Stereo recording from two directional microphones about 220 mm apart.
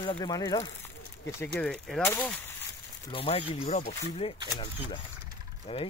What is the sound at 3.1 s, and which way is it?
Speech, 25° left (ahead or behind).